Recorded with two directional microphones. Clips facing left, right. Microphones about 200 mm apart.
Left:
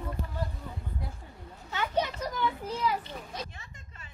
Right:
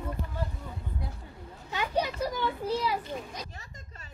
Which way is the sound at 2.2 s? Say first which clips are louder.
Right 2 dB; 35° right (ahead or behind).